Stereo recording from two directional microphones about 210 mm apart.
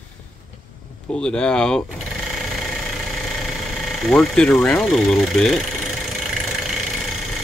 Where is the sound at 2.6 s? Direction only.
Centre (ahead or behind).